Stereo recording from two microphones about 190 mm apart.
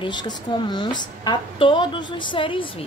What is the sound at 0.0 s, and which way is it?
A woman's voice, 25° left (ahead or behind).